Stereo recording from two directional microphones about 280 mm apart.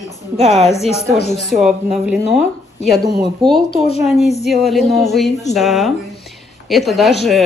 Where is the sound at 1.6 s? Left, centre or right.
Centre.